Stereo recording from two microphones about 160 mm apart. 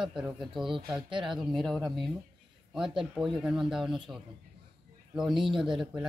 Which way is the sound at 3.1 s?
Centre (ahead or behind).